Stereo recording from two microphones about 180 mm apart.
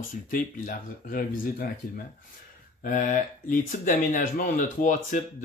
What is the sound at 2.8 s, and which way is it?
Speech, 50° left (ahead or behind).